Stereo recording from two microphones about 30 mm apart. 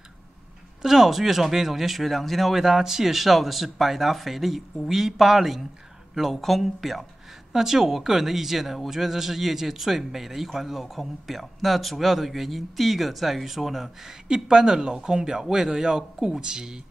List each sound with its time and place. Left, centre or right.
0.8 s speech: centre
2.6 s speech: centre
7.5 s speech: centre
14.2 s speech: right